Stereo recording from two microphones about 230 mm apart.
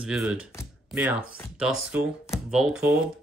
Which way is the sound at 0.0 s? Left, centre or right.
Centre.